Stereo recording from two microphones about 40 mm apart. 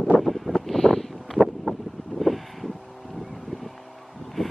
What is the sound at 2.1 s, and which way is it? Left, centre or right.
Wind, centre.